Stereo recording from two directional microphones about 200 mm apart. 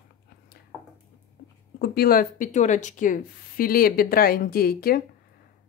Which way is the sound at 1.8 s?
50° left (ahead or behind).